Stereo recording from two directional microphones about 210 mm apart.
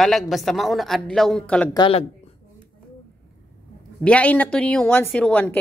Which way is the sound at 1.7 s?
25° left (ahead or behind).